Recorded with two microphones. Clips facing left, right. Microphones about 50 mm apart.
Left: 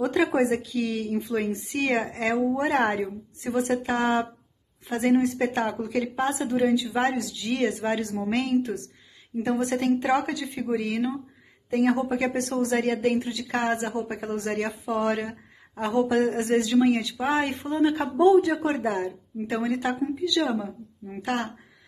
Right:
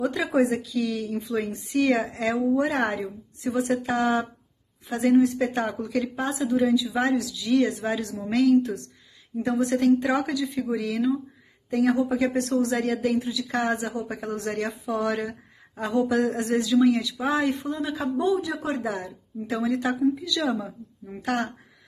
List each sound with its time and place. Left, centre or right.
0.0 s speech: left
0.3 s a woman's voice: left
12.2 s a woman's voice: left
18.2 s a woman's voice: left